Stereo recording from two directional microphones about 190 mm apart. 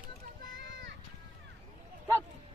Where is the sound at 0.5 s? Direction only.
70° right (ahead or behind).